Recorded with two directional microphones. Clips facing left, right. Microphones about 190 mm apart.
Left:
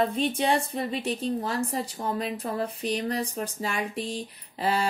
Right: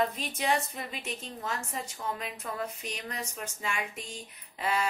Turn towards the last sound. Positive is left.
turn(degrees=30)  # may be behind; listen again after turning